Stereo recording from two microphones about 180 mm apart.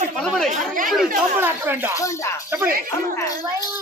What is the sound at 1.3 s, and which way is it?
Speech, 10° right (ahead or behind).